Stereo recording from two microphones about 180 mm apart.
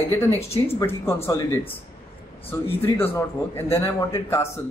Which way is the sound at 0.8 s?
10° left (ahead or behind).